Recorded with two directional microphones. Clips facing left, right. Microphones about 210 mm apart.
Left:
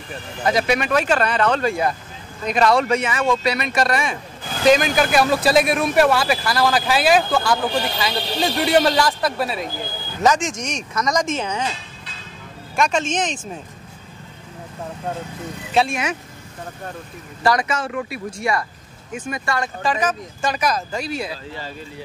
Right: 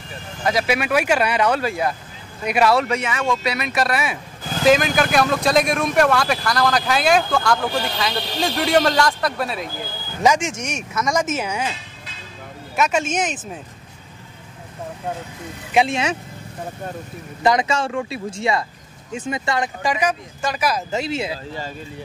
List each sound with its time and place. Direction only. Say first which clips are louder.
0.5 s speech: left 1 dB; 5° right (ahead or behind)
10.2 s speech: even; 10° right (ahead or behind)
12.7 s speech: even; 5° right (ahead or behind)
15.7 s speech: right 1 dB; 15° right (ahead or behind)
17.4 s speech: right 1 dB; 20° right (ahead or behind)
20.9 s speech: right 2 dB; 25° right (ahead or behind)